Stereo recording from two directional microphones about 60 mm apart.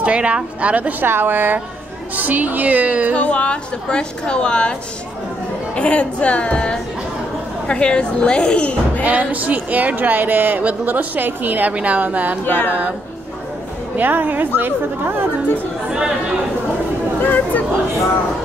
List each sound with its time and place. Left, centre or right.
0.0 s speech: right
1.0 s speech: right
3.2 s a woman's voice: centre
5.8 s a woman's voice: left
9.0 s speech: right
12.4 s a sound: left
13.9 s speech: right
15.9 s chatter: centre
17.2 s speech: left